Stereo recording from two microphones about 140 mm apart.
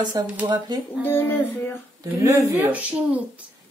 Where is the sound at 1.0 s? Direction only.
15° left (ahead or behind).